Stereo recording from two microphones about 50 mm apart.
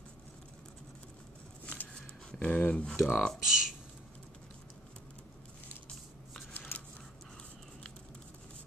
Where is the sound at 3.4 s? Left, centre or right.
Centre.